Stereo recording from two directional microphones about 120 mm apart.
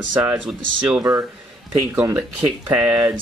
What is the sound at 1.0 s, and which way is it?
Speech, 25° right (ahead or behind).